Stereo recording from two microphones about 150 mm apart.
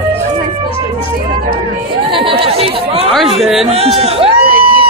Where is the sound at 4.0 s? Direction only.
40° right (ahead or behind).